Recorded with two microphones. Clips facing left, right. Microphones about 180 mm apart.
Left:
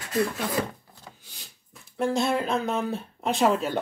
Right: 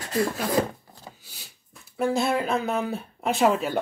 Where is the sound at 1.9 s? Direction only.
5° right (ahead or behind).